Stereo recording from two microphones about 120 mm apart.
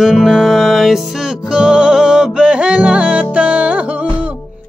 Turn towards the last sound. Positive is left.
turn(degrees=-10)  # may be behind; listen again after turning